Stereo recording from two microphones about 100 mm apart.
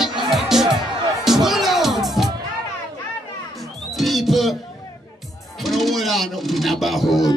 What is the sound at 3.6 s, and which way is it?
Music, centre (ahead or behind).